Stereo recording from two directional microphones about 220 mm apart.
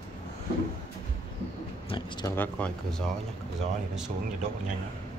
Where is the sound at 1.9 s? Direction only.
20° left (ahead or behind).